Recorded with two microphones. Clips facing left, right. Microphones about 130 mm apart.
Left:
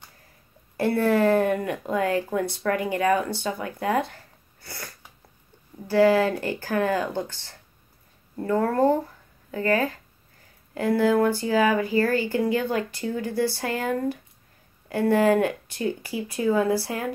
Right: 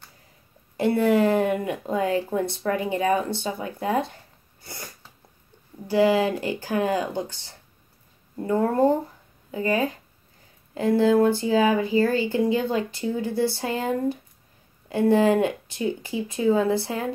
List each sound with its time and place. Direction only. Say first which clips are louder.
0.7 s speech: right 1 dB; 20° right (ahead or behind)
4.6 s sneeze: even; 20° right (ahead or behind)
5.9 s speech: left 1 dB; 15° right (ahead or behind)